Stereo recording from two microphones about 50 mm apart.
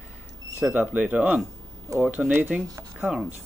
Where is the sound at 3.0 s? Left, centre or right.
Centre.